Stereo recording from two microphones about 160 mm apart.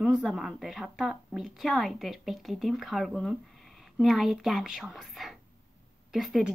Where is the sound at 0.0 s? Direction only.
Centre (ahead or behind).